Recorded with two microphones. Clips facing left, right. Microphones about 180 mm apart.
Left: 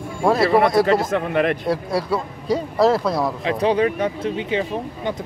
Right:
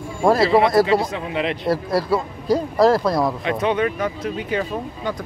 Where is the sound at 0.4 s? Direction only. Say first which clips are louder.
Left 1 dB; 55° left (ahead or behind).